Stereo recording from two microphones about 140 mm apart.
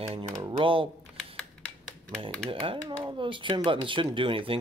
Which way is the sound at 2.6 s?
40° right (ahead or behind).